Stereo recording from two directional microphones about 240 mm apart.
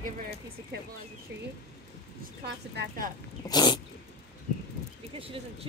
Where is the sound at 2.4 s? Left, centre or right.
Right.